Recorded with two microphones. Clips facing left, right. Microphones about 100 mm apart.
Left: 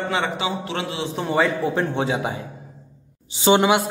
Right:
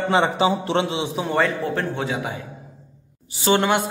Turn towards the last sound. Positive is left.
turn(degrees=15)  # may be behind; listen again after turning